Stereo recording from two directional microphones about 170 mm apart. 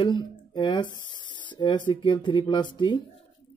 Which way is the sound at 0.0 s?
25° left (ahead or behind).